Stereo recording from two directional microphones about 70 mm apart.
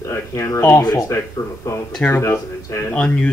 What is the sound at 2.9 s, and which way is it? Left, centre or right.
Speech, centre.